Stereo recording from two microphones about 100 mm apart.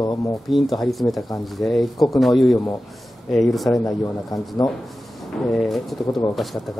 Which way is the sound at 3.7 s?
40° left (ahead or behind).